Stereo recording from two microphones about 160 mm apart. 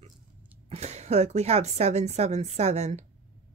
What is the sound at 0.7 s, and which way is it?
Speech, 45° right (ahead or behind).